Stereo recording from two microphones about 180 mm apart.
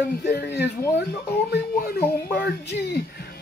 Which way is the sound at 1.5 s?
60° left (ahead or behind).